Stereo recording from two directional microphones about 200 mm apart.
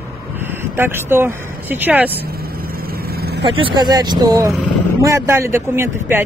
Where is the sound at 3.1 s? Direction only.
50° right (ahead or behind).